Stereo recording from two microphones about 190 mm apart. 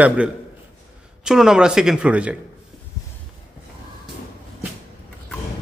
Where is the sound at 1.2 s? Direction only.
5° right (ahead or behind).